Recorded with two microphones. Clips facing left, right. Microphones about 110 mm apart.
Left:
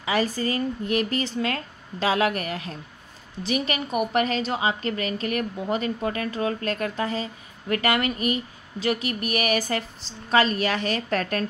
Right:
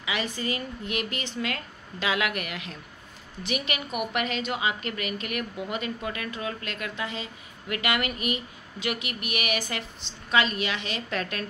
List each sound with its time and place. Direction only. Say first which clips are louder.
0.0 s a woman's voice: left 6 dB; 40° left (ahead or behind)